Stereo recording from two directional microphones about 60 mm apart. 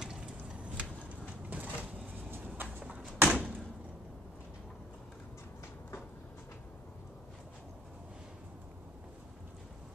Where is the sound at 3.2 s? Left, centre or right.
Centre.